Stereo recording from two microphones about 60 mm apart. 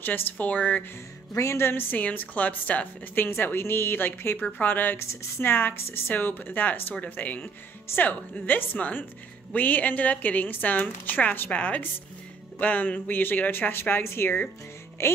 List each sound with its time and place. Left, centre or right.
0.0 s a woman's voice: left
1.3 s a woman's voice: left
2.0 s a woman's voice: left
3.2 s a woman's voice: left